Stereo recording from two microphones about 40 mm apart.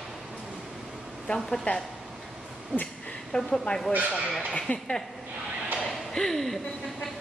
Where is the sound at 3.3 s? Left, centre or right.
Centre.